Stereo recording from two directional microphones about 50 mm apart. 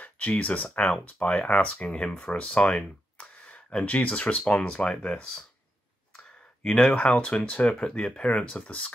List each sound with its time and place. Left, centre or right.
0.0 s speech: left
0.7 s speech: centre
1.0 s speech: left